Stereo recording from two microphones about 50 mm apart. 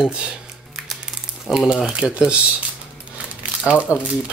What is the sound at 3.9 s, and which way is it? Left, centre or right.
Speech, left.